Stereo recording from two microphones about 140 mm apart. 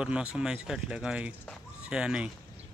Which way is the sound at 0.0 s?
5° right (ahead or behind).